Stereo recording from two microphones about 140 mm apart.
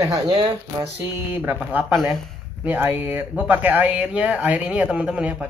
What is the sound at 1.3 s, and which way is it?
Speech, 10° right (ahead or behind).